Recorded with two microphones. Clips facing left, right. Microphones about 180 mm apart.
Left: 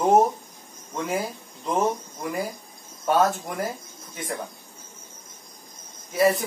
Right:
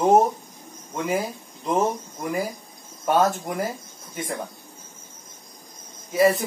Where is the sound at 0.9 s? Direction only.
Centre (ahead or behind).